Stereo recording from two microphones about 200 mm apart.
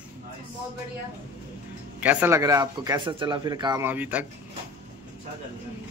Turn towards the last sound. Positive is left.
turn(degrees=-10)  # may be behind; listen again after turning